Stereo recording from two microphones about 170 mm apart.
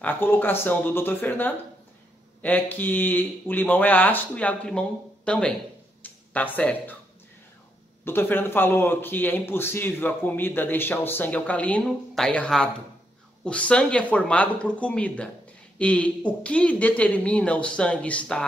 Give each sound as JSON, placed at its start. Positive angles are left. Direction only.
{"t": 0.0, "sound": "speech", "side_deg": 10}
{"t": 8.0, "sound": "speech", "side_deg": 15}